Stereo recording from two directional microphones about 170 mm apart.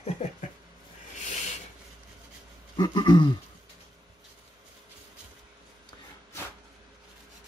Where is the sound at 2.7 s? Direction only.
25° left (ahead or behind).